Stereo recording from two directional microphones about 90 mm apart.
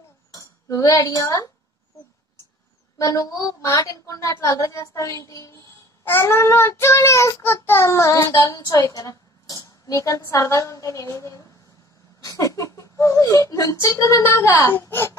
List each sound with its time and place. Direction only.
0.3 s speech: 40° left (ahead or behind)
3.0 s a child's voice: 40° left (ahead or behind)